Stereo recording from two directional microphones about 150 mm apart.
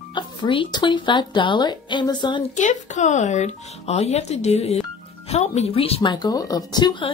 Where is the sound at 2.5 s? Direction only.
55° left (ahead or behind); by 7.1 s 30° left (ahead or behind).